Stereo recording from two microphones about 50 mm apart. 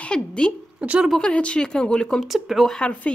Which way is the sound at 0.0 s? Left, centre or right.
Centre.